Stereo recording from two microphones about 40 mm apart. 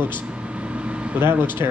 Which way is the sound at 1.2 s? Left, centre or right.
Right.